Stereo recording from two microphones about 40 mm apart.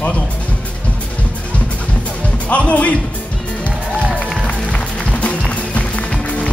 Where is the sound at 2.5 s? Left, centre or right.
Left.